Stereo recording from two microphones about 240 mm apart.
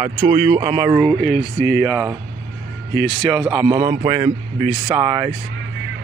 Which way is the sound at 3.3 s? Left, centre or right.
Centre.